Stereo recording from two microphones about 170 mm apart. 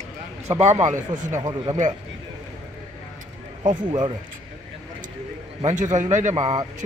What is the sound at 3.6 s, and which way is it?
Speech, 25° right (ahead or behind).